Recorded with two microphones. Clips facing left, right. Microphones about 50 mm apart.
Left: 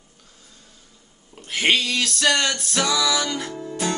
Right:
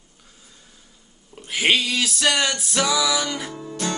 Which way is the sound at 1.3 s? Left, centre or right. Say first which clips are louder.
Even; centre.